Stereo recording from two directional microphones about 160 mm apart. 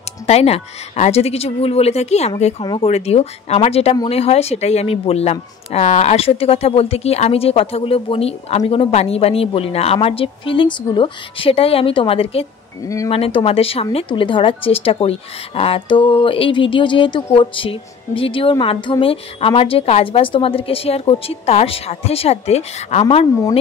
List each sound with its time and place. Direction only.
0.3 s a woman's voice: 40° left (ahead or behind)
2.6 s speech: 30° left (ahead or behind)
2.9 s a woman's voice: 40° left (ahead or behind)
12.8 s speech: 20° left (ahead or behind)
13.1 s a woman's voice: 35° left (ahead or behind)